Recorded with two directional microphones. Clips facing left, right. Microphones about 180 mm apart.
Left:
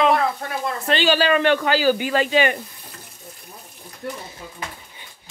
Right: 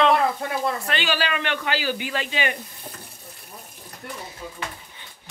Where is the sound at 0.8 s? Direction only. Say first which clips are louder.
Left 7 dB; 30° left (ahead or behind).